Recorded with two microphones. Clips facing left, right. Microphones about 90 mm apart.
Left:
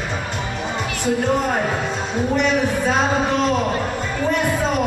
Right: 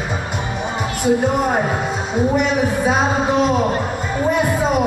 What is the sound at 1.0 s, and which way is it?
A man's voice, 10° right (ahead or behind).